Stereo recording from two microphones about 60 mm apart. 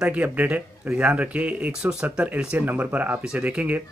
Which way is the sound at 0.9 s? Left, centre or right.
Centre.